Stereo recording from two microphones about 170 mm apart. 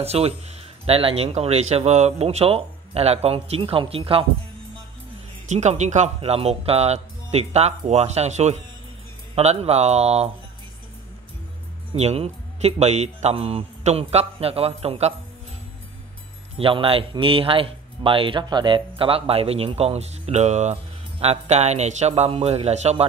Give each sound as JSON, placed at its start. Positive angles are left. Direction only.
{"t": 0.0, "sound": "speech", "side_deg": -35}
{"t": 5.5, "sound": "speech", "side_deg": -45}
{"t": 11.9, "sound": "speech", "side_deg": -35}
{"t": 16.5, "sound": "speech", "side_deg": -30}